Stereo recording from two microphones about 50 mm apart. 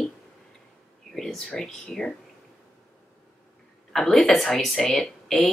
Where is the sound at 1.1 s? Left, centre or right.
Centre.